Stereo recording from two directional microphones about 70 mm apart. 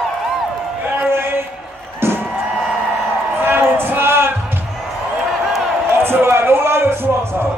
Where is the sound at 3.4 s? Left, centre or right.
Right.